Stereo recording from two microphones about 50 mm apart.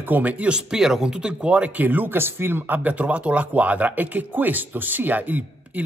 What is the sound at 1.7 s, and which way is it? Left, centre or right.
Speech, right.